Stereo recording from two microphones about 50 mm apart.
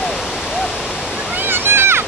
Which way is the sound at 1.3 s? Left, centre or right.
Right.